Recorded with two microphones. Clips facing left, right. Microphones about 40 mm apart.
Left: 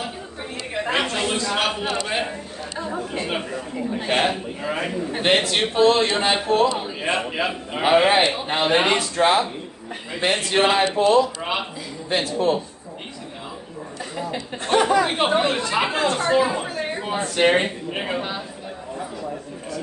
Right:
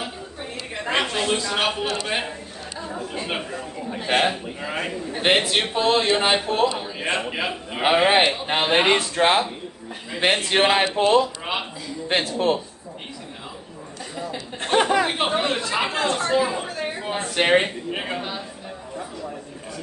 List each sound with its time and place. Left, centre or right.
0.7 s a man's voice: centre
4.1 s a man's voice: centre
8.1 s a man's voice: centre
10.7 s speech: right
14.8 s a man's voice: centre
15.0 s speech: centre
17.1 s a man's voice: centre
17.9 s speech: centre